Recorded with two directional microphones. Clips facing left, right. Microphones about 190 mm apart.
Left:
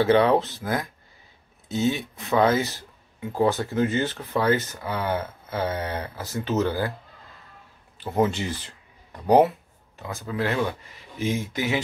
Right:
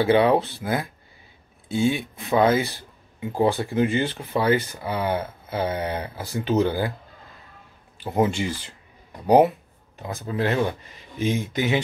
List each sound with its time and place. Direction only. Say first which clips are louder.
0.0 s speech: right 1 dB; 15° right (ahead or behind)
8.0 s speech: right 1 dB; 15° right (ahead or behind)